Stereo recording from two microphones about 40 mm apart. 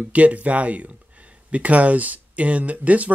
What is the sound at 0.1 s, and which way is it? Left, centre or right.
Speech, right.